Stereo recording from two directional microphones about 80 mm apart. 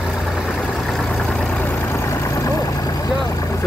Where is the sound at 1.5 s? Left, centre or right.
Left.